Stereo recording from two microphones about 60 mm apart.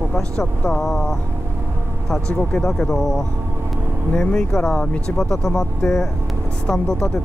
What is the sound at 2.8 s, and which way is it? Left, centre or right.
Speech, centre.